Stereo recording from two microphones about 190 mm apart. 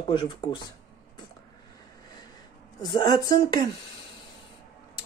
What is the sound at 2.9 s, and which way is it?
Speech, 20° left (ahead or behind).